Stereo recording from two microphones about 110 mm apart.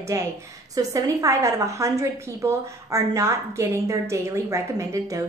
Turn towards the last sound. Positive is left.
turn(degrees=-30)  # may be behind; listen again after turning